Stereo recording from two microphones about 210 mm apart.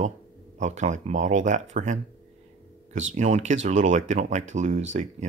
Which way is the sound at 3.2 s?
35° right (ahead or behind).